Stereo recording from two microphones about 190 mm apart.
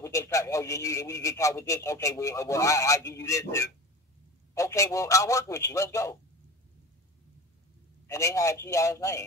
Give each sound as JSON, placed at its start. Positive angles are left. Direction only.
{"t": 0.0, "sound": "a man's voice", "side_deg": 15}
{"t": 8.1, "sound": "a man's voice", "side_deg": 15}